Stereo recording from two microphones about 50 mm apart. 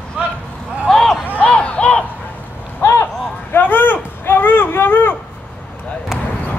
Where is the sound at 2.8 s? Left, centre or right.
Left.